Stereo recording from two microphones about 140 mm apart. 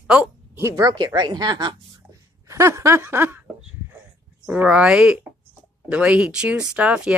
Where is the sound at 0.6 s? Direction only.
20° right (ahead or behind).